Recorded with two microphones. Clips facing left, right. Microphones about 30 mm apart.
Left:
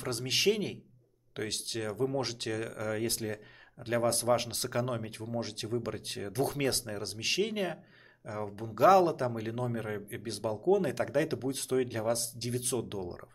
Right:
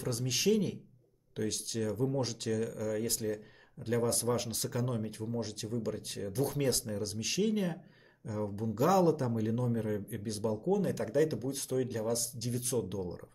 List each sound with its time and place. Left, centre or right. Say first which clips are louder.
0.0 s speech: left 3 dB; left